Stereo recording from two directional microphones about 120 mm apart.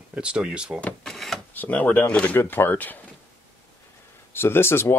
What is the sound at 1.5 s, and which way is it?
Speech, 15° left (ahead or behind).